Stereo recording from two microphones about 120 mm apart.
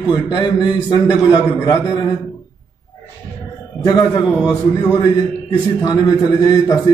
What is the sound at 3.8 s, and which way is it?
Speech, 30° left (ahead or behind).